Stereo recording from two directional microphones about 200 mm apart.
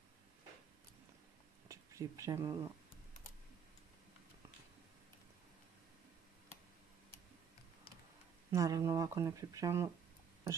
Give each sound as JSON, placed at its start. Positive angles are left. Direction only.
{"t": 1.7, "sound": "speech", "side_deg": -15}
{"t": 8.5, "sound": "speech", "side_deg": -15}